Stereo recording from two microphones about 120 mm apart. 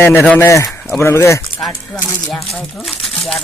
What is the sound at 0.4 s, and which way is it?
Speech, 25° left (ahead or behind).